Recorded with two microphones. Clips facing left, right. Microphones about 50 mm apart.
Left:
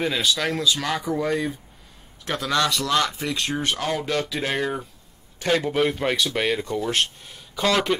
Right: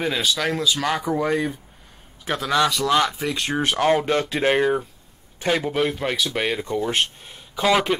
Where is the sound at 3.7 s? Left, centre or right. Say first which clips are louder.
Right 9 dB; right.